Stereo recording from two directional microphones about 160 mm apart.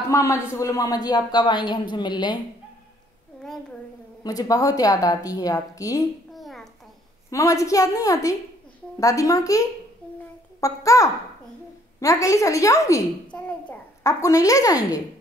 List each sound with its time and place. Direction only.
0.1 s a man's voice: 15° left (ahead or behind)
4.2 s a man's voice: 25° left (ahead or behind)
6.3 s a sound: centre (ahead or behind)
7.2 s a man's voice: 20° left (ahead or behind)
13.3 s babbling: 10° left (ahead or behind)
14.2 s a man's voice: 20° left (ahead or behind)